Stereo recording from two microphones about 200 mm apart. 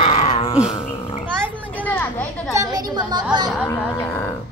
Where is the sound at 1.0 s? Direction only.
25° left (ahead or behind).